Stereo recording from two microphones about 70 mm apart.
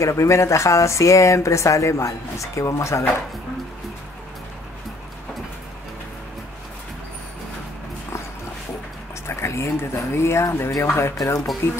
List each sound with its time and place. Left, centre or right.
0.0 s speech: left
9.3 s speech: left